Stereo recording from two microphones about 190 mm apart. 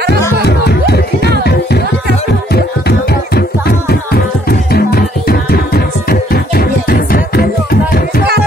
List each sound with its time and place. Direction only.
0.5 s music: 55° left (ahead or behind)